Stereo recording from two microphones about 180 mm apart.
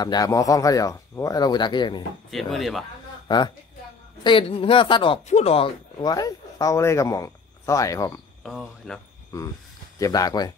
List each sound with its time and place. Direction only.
0.0 s speech: 20° left (ahead or behind)
2.3 s speech: centre (ahead or behind)
3.3 s a woman's voice: 25° left (ahead or behind)
8.5 s speech: centre (ahead or behind)
9.9 s speech: 20° left (ahead or behind)